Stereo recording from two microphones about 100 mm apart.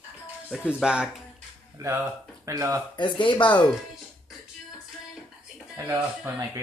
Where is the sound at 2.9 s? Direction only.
50° left (ahead or behind).